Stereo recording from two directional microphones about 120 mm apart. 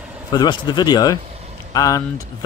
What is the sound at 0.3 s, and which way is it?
Speech, 40° left (ahead or behind).